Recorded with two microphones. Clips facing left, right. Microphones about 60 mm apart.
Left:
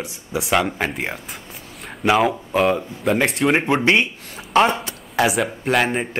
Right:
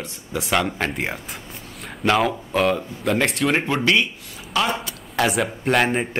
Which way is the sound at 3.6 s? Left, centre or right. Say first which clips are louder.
Left 3 dB; left.